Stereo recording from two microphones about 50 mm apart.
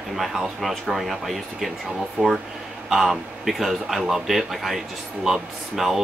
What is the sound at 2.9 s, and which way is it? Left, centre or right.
Speech, centre.